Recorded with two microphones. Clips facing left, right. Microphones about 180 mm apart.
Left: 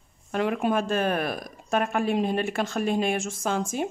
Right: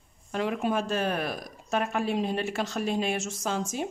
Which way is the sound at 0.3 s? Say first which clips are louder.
Left 3 dB; 60° left (ahead or behind).